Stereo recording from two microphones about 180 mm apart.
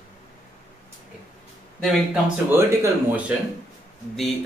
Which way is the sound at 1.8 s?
Centre (ahead or behind).